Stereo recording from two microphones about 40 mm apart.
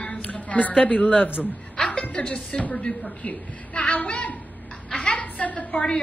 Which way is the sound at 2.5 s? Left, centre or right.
Left.